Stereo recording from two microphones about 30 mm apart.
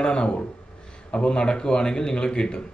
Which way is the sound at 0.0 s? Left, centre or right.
Left.